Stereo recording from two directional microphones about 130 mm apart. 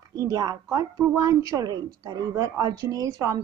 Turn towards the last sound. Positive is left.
turn(degrees=-25)  # may be behind; listen again after turning